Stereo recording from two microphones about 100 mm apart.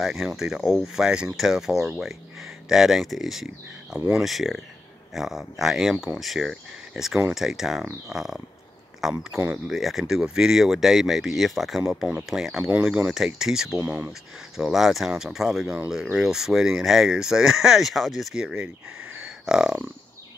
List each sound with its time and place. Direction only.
0.0 s speech: centre (ahead or behind)
13.7 s speech: 20° right (ahead or behind)
14.6 s speech: centre (ahead or behind)
19.2 s grunt: 5° right (ahead or behind)